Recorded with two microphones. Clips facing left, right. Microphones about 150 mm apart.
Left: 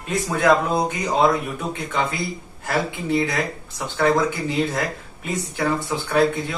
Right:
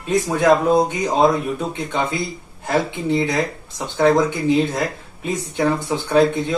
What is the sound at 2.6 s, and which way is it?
A man's voice, 25° right (ahead or behind).